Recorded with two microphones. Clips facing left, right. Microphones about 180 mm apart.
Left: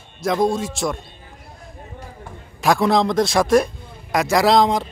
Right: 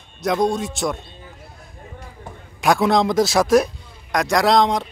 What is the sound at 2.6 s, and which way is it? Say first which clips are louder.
A man's voice: even; centre (ahead or behind).